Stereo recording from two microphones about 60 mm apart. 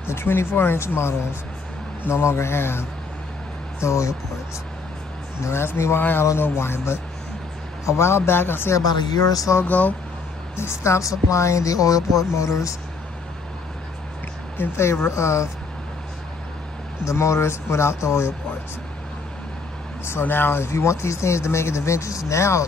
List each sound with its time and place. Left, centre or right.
0.0 s speech: left
3.8 s speech: left
5.4 s speech: left
8.7 s speech: left
9.6 s speech: left
10.5 s speech: left
14.6 s speech: left
17.0 s speech: left
20.1 s speech: left